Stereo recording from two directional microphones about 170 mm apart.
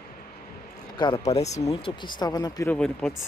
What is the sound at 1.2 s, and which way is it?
Speech, 40° left (ahead or behind).